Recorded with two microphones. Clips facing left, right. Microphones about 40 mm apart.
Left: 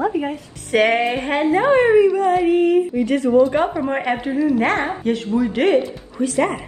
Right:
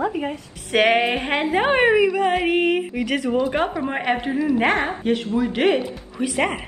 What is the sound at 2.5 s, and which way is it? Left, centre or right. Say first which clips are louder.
Speech: left 4 dB; right.